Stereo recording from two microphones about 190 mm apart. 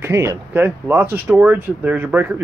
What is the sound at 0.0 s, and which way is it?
Speech, 15° right (ahead or behind).